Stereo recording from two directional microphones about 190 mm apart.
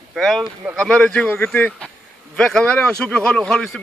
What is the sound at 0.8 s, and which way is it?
A man's voice, 5° left (ahead or behind).